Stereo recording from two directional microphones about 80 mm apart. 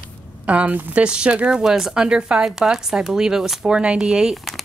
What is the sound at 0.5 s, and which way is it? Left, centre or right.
Speech, centre.